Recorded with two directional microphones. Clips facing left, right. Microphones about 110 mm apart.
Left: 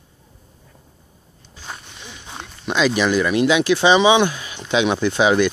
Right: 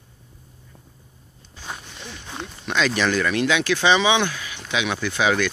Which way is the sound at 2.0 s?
5° left (ahead or behind).